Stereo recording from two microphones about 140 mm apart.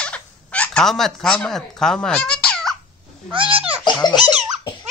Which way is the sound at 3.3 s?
35° right (ahead or behind).